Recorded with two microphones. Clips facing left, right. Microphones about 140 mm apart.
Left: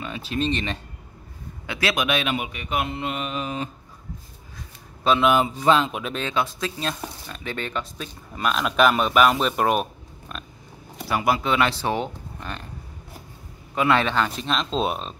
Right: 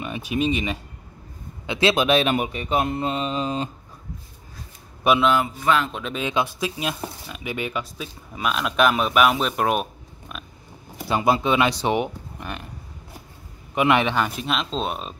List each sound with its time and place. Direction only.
0.0 s speech: 15° right (ahead or behind)
1.7 s speech: 25° right (ahead or behind)
2.9 s mantra: 35° right (ahead or behind)
5.1 s speech: 15° right (ahead or behind)
5.4 s speech: 25° left (ahead or behind)
5.9 s speech: 10° left (ahead or behind)
6.1 s speech: 15° right (ahead or behind)
11.1 s speech: 25° right (ahead or behind)
13.7 s speech: 15° right (ahead or behind); by 15.1 s centre (ahead or behind)